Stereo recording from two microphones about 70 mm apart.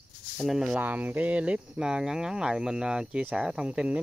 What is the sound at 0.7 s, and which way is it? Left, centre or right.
Speech, right.